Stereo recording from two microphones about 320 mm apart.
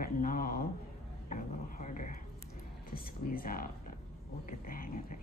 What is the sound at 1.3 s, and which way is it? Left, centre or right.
Dog, left.